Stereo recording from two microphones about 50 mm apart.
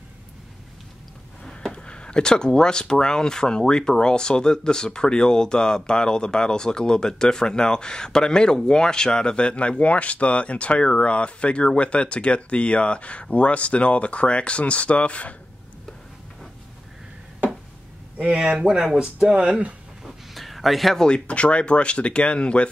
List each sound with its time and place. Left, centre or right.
1.4 s speech: centre
18.6 s speech: centre
20.1 s a sound: centre
21.0 s speech: left